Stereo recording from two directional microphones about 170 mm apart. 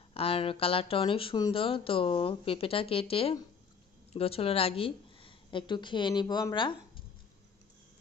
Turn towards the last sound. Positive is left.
turn(degrees=25)  # may be behind; listen again after turning